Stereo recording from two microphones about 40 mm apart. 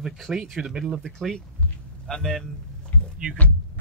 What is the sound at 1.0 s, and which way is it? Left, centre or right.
Speech, centre.